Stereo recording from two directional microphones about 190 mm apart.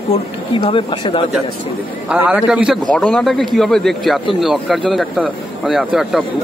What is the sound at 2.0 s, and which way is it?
Speech, 5° right (ahead or behind).